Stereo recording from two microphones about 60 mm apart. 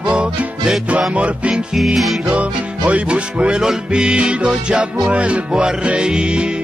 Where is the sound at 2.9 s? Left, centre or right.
Centre.